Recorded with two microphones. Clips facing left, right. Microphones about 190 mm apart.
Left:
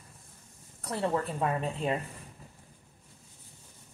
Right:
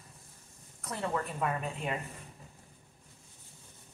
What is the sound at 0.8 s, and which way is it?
A woman's voice, 30° left (ahead or behind).